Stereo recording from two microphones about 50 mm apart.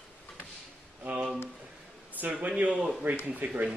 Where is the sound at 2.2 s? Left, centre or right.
Right.